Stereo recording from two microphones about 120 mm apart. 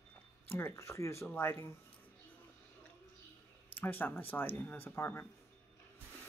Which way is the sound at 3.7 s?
15° left (ahead or behind).